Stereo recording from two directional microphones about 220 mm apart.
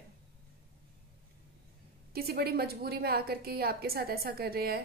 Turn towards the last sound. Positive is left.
turn(degrees=-45)  # may be behind; listen again after turning